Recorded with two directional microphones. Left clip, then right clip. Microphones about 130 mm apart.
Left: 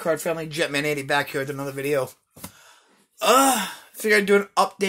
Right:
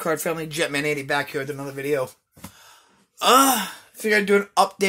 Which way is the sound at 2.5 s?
10° right (ahead or behind).